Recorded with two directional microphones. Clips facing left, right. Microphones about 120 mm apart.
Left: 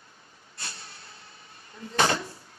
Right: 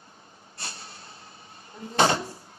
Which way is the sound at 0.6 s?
30° right (ahead or behind).